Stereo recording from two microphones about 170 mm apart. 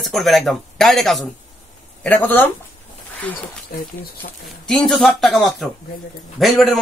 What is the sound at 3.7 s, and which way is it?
Speech, 60° left (ahead or behind).